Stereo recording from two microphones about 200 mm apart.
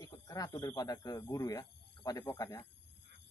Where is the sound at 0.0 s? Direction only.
20° left (ahead or behind).